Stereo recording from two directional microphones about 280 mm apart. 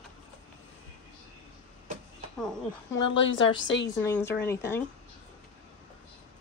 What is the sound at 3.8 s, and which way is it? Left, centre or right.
A woman's voice, centre.